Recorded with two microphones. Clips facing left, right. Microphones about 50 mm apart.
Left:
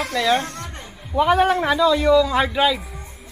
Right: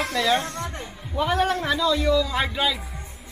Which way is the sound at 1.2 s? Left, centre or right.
Centre.